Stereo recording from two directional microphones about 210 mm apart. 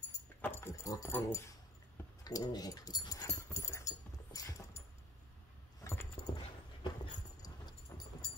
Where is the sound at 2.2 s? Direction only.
20° left (ahead or behind).